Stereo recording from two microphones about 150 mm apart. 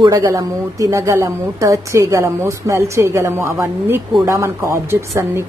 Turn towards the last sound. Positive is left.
turn(degrees=-20)  # may be behind; listen again after turning